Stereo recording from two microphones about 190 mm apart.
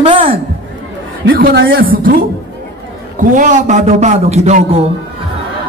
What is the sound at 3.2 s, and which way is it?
A man's voice, 40° right (ahead or behind).